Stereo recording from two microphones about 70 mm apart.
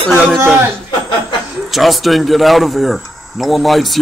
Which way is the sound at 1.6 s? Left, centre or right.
Centre.